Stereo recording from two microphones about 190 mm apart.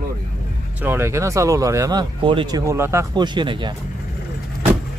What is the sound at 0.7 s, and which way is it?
Speech, 10° right (ahead or behind).